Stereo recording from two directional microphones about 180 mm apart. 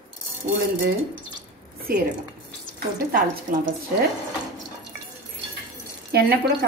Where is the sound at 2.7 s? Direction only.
55° right (ahead or behind).